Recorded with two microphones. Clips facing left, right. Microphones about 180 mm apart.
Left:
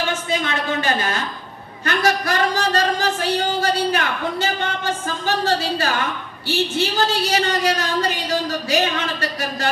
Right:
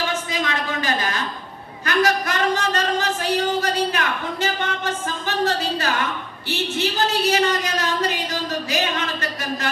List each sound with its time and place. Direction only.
0.3 s a man's voice: 30° left (ahead or behind)
7.2 s speech: 30° left (ahead or behind)